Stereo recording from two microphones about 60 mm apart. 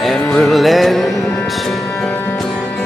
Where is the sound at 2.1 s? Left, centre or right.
Left.